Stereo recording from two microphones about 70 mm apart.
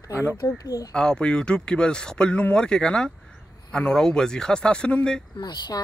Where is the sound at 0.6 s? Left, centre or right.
Left.